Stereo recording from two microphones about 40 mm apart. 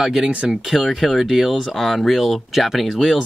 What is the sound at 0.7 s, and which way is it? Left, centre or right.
Speech, centre.